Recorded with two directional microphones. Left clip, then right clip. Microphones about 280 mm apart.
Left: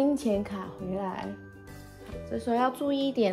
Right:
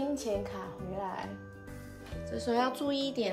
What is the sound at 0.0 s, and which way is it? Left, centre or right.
Speech, left.